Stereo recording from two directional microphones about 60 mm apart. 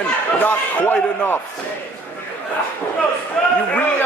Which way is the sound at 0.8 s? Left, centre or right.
Left.